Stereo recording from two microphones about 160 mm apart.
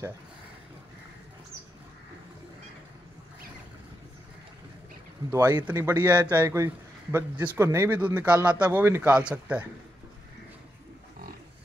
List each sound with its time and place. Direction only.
5.3 s speech: 20° right (ahead or behind)